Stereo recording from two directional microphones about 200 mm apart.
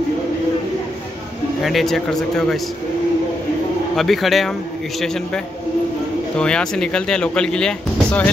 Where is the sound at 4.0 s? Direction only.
Centre (ahead or behind).